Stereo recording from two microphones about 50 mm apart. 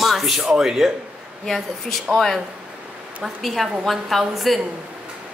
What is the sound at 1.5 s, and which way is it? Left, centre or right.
A man's voice, centre.